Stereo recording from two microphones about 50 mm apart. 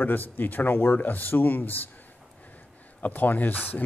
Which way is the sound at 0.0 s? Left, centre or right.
Left.